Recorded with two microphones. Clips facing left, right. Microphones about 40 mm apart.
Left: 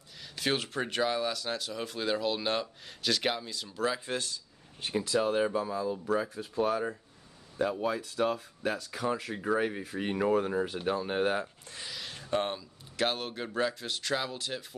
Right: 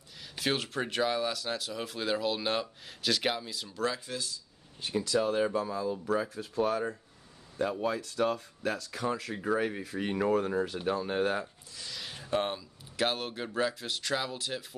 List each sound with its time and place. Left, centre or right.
0.2 s speech: centre
4.0 s speech: left
4.9 s speech: left
11.9 s speech: centre